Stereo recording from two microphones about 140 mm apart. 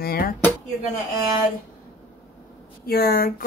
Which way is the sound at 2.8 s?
90° left.